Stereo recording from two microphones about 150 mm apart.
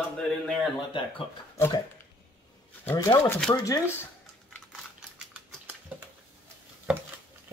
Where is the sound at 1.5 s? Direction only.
20° left (ahead or behind).